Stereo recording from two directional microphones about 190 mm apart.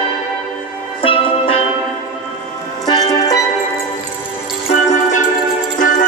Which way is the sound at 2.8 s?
20° left (ahead or behind).